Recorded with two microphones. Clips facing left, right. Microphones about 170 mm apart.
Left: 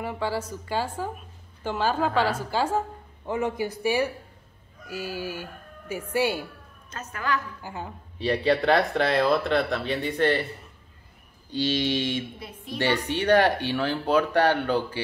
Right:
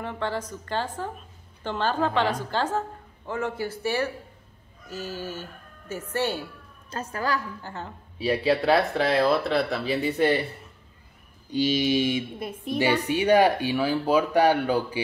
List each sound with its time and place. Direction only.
0.0 s a woman's voice: 10° left (ahead or behind)
6.9 s a woman's voice: 30° right (ahead or behind)
7.6 s a woman's voice: 10° left (ahead or behind)
8.2 s speech: 5° right (ahead or behind)
11.5 s speech: 10° right (ahead or behind)
12.4 s a woman's voice: 50° right (ahead or behind)
12.7 s speech: 10° right (ahead or behind)